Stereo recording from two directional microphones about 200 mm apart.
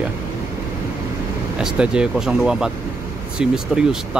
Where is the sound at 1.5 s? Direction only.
5° right (ahead or behind).